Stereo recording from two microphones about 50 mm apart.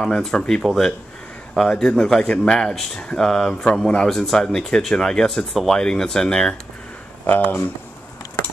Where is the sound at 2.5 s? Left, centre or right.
Centre.